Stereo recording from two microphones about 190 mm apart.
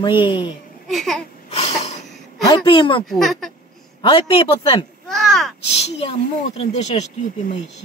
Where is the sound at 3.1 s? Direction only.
Centre (ahead or behind).